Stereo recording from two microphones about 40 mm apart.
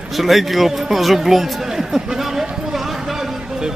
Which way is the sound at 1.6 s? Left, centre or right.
Centre.